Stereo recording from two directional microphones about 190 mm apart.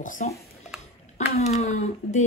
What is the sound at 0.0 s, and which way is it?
Speech, 45° left (ahead or behind).